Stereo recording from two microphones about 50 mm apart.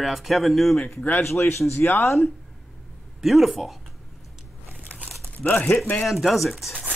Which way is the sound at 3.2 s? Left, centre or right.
Centre.